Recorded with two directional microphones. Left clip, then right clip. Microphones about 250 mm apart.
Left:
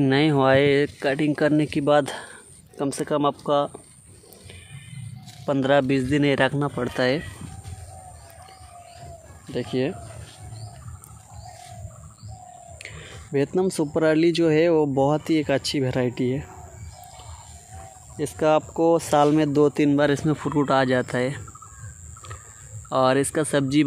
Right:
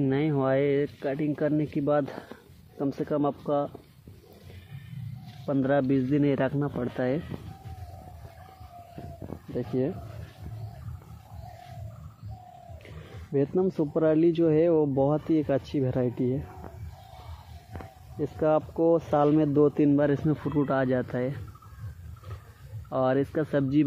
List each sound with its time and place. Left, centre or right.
0.0 s speech: left
5.4 s speech: centre
9.5 s speech: centre
13.3 s speech: centre
18.1 s speech: centre
22.8 s speech: centre